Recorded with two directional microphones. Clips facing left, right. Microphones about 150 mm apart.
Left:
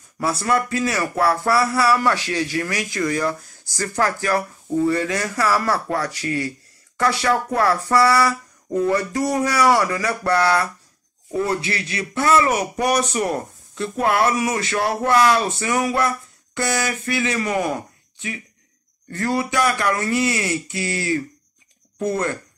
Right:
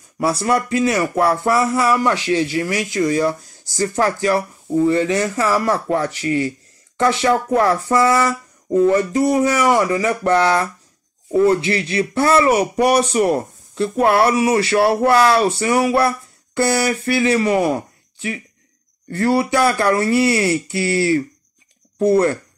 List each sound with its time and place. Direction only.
0.2 s a man's voice: 30° right (ahead or behind)